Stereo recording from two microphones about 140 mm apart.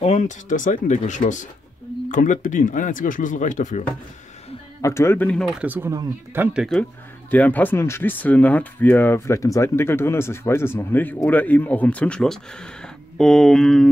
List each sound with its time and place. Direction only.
0.0 s speech: 55° left (ahead or behind)
4.8 s speech: 20° left (ahead or behind)
5.5 s speech: 10° right (ahead or behind)
6.6 s speech: 5° left (ahead or behind)